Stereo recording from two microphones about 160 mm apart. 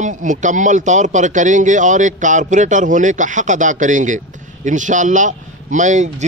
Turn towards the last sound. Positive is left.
turn(degrees=-50)  # may be behind; listen again after turning